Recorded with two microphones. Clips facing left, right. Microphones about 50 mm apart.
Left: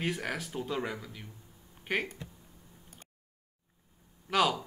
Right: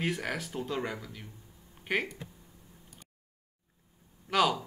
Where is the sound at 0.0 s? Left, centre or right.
Centre.